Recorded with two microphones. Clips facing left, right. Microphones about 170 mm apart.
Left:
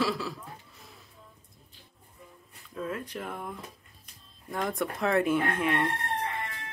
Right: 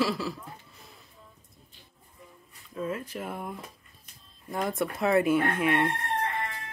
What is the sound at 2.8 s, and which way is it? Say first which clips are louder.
Speech: right 2 dB; 5° right (ahead or behind).